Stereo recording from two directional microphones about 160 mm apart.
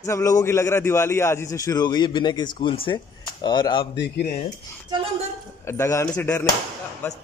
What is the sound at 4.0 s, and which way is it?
Speech, 90° left.